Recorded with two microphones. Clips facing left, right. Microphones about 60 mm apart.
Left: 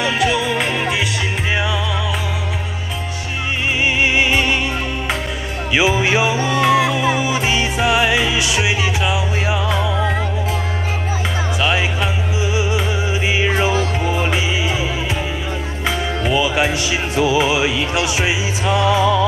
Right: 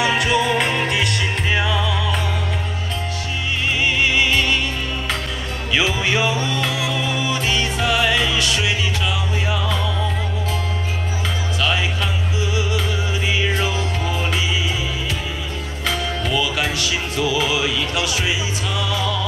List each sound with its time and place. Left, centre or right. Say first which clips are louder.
0.0 s music: even; centre
3.8 s music: left 2 dB; left
5.7 s music: left 4 dB; centre
11.6 s music: left 3 dB; left
15.9 s music: left 3 dB; left